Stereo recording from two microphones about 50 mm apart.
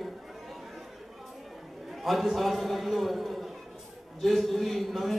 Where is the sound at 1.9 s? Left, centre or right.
Centre.